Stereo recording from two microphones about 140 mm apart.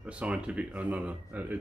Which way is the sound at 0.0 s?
10° right (ahead or behind).